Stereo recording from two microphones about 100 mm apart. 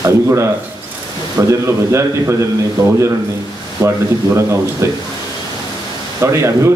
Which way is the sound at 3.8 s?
30° right (ahead or behind).